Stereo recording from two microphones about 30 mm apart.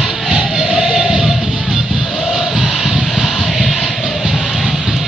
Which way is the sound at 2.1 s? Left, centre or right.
Centre.